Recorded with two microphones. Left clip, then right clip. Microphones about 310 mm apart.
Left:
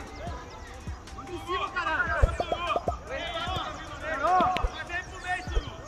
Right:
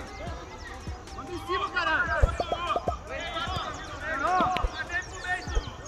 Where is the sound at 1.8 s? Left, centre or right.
Centre.